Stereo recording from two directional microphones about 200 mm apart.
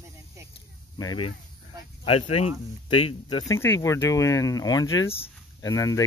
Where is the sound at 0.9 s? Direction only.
20° left (ahead or behind).